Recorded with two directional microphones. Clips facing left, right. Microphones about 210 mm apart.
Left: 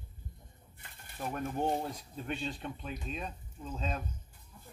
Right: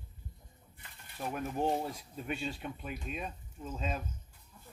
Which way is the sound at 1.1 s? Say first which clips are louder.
Even; 5° right (ahead or behind).